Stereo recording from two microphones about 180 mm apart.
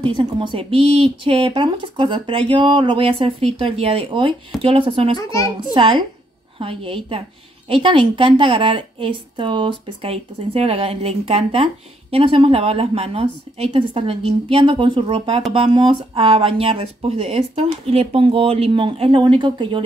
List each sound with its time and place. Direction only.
0.0 s a woman's voice: 30° right (ahead or behind)